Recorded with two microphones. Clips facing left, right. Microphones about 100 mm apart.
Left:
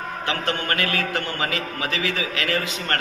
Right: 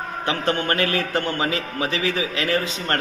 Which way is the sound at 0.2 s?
30° right (ahead or behind).